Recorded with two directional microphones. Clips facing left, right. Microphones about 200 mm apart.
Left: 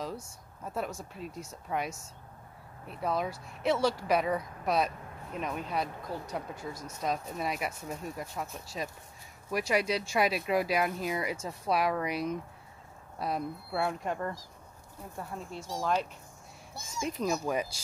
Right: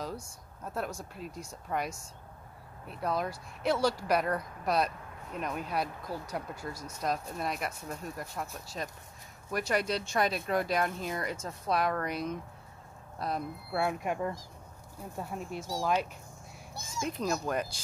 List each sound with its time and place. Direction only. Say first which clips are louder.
0.7 s speech: left 1 dB; centre (ahead or behind)